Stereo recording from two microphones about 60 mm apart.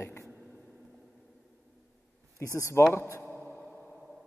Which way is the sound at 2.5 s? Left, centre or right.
Left.